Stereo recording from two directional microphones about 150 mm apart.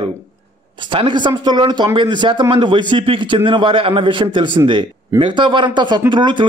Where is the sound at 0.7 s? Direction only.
30° right (ahead or behind).